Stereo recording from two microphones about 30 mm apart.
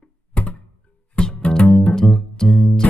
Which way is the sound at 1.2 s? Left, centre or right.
Left.